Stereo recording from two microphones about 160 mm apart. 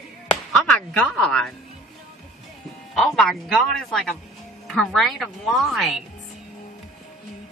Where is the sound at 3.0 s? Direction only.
Centre (ahead or behind).